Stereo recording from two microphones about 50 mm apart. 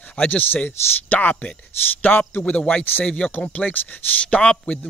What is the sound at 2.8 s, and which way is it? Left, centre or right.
Speech, left.